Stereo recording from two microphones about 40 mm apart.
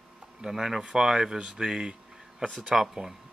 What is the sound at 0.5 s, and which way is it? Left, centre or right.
Speech, centre.